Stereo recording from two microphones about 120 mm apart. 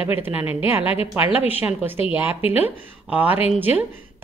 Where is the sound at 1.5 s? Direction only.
15° right (ahead or behind).